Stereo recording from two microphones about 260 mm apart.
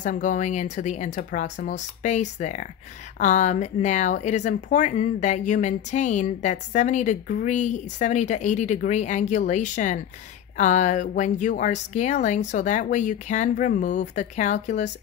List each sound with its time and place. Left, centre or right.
0.0 s speech: left